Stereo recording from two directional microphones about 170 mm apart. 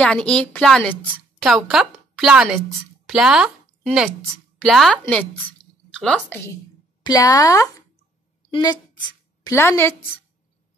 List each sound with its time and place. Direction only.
0.0 s a woman's voice: 5° left (ahead or behind)
7.0 s a woman's voice: 20° left (ahead or behind)